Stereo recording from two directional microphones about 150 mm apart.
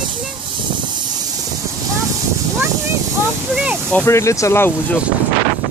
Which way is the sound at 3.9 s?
15° left (ahead or behind).